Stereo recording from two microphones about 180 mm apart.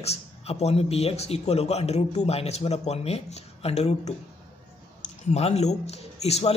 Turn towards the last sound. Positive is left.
turn(degrees=35)  # may be behind; listen again after turning